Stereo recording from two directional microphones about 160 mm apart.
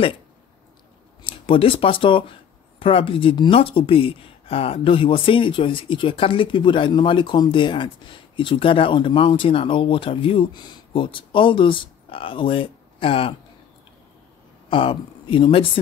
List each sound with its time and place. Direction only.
1.2 s speech: 35° left (ahead or behind)
14.7 s speech: 30° left (ahead or behind)